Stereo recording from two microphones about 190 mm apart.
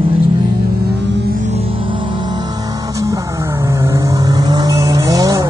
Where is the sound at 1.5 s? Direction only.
25° right (ahead or behind).